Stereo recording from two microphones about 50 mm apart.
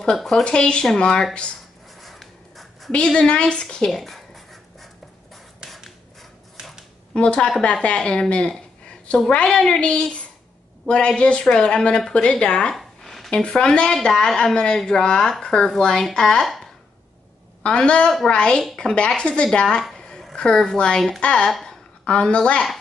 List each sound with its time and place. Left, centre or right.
0.3 s speech: centre
2.0 s a sound: centre
2.9 s a woman's voice: centre
3.6 s writing: centre
7.2 s a woman's voice: centre
12.7 s a sound: centre
13.3 s speech: centre
17.6 s a woman's voice: centre
20.0 s a sound: centre
20.3 s a woman's voice: centre